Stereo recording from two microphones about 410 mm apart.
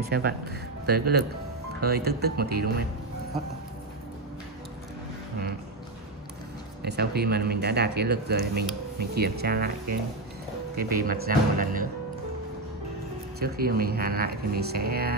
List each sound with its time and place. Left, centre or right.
0.8 s speech: right
6.8 s speech: right
13.4 s speech: right